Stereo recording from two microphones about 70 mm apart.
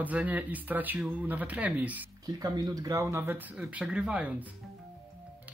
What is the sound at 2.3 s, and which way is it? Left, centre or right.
Speech, right.